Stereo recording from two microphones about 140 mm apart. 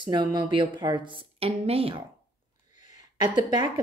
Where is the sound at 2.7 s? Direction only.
60° left (ahead or behind).